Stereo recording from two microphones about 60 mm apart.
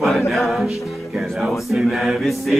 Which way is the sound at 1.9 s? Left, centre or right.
Centre.